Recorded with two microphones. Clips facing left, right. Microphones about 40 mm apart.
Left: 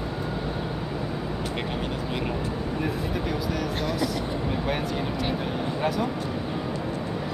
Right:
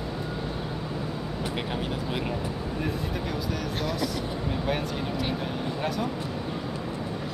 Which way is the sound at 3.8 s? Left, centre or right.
Centre.